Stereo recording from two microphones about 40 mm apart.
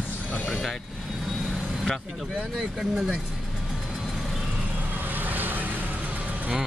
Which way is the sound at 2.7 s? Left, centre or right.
Centre.